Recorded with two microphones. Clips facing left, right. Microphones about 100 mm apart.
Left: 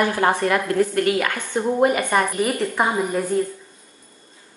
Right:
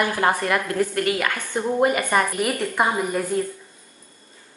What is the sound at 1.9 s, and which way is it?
Speech, 15° left (ahead or behind).